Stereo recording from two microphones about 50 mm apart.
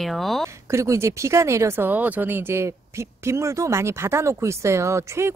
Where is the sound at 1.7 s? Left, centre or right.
Right.